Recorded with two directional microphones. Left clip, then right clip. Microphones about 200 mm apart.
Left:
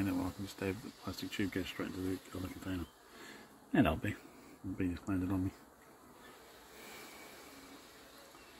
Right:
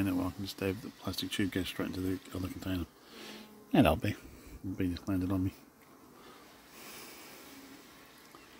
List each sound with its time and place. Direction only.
0.0 s speech: 20° right (ahead or behind)
3.3 s a sound: 25° right (ahead or behind)
4.7 s speech: 20° right (ahead or behind)